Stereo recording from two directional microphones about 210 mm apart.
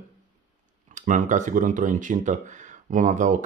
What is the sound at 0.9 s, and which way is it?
Speech, 35° right (ahead or behind).